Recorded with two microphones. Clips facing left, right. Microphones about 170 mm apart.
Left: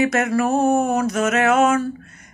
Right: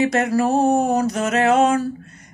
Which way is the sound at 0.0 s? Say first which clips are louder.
Right 1 dB; 30° right (ahead or behind).